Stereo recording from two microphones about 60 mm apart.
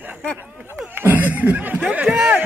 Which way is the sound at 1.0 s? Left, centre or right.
Right.